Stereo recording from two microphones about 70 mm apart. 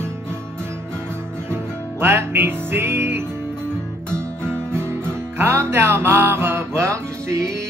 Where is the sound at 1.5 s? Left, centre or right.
Right.